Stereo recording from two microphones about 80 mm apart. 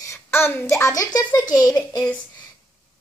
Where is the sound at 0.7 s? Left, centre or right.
Left.